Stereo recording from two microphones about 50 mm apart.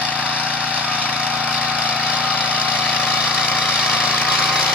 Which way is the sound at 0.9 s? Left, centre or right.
Left.